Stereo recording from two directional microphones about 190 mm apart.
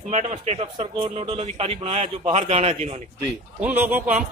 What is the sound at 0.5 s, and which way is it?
A man's voice, 25° right (ahead or behind).